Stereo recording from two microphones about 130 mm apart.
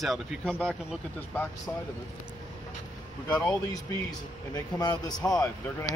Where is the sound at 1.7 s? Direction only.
15° left (ahead or behind).